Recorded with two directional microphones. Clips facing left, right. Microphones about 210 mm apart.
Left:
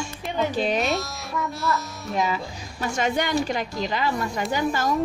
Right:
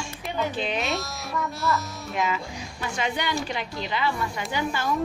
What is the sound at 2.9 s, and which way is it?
A woman's voice, 45° left (ahead or behind).